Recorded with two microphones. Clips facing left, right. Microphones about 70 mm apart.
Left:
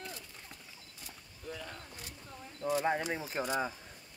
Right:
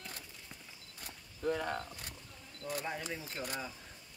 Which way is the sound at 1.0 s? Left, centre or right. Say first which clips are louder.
Right 11 dB; right.